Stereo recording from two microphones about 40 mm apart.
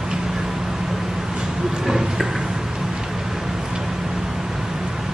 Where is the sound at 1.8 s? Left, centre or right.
Centre.